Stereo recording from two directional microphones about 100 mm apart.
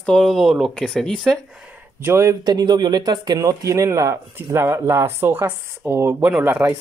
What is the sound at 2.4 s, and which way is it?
Speech, 45° right (ahead or behind).